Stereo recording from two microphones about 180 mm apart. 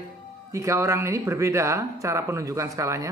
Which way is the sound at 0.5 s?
15° right (ahead or behind).